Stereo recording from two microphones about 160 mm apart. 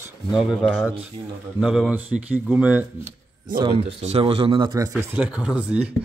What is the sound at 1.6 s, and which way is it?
Speech, 5° right (ahead or behind).